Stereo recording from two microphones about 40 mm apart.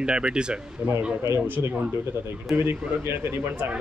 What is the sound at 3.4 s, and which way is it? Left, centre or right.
Speech, right.